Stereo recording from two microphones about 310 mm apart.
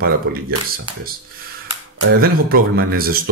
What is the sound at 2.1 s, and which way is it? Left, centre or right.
Speech, right.